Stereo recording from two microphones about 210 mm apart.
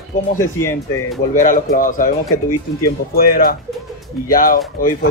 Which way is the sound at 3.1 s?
45° left (ahead or behind).